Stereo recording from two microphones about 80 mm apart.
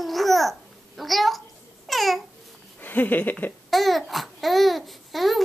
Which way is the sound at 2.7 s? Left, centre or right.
Left.